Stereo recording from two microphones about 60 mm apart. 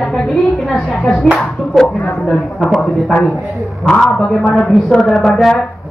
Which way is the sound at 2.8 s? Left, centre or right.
Centre.